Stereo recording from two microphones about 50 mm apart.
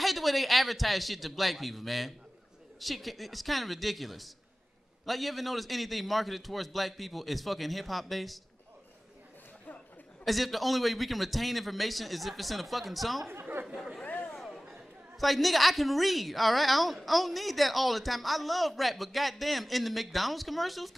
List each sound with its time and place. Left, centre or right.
0.0 s a woman's voice: centre
10.2 s a woman's voice: centre
13.3 s chatter: right
14.0 s a sound: left
14.7 s a woman's voice: centre